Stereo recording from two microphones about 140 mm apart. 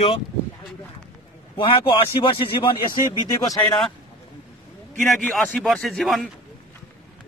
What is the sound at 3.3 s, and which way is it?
Speech, 25° left (ahead or behind).